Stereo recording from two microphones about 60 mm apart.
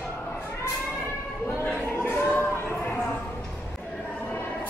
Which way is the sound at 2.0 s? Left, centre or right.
Left.